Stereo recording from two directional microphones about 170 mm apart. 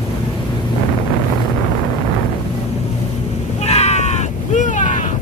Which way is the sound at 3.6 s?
40° left (ahead or behind).